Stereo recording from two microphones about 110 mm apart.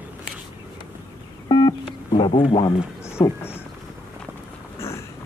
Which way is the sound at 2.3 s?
60° left (ahead or behind).